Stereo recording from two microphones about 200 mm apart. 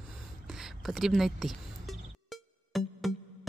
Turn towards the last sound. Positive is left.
turn(degrees=0)  # may be behind; listen again after turning